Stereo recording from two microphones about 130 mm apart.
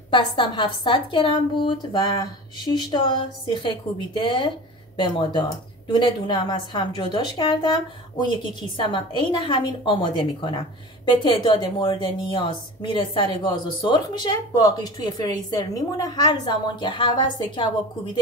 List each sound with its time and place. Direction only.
0.1 s a woman's voice: 40° left (ahead or behind)